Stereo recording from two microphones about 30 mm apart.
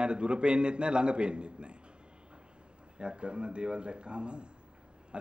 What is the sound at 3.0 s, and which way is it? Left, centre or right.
Speech, right.